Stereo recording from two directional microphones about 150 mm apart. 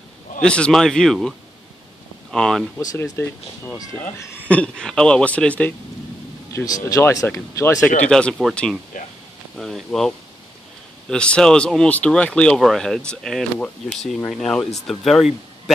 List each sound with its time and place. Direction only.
0.4 s speech: 5° left (ahead or behind)
2.3 s speech: 5° left (ahead or behind)
2.8 s a man's voice: 20° left (ahead or behind)
6.5 s speech: 20° left (ahead or behind)
8.0 s speech: 5° left (ahead or behind)
8.9 s a sound: 65° left (ahead or behind)
9.6 s speech: centre (ahead or behind)